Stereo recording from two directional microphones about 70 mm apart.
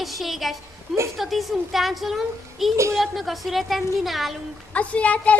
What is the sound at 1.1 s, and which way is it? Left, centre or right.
A woman's voice, centre.